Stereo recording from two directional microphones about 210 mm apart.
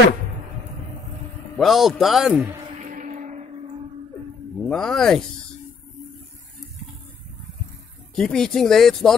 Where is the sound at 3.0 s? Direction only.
35° right (ahead or behind).